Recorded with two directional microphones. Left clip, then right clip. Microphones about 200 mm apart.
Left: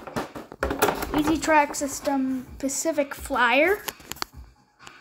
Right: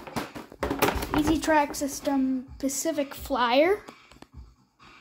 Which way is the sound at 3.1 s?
Centre (ahead or behind).